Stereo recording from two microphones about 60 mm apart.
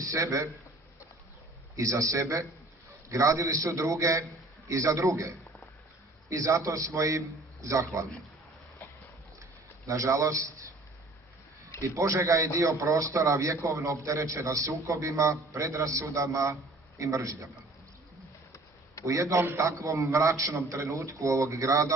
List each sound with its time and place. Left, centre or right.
0.0 s a man's voice: right
1.8 s a man's voice: right
6.3 s a man's voice: right
9.4 s a sound: right
11.8 s a man's voice: right
19.0 s a man's voice: right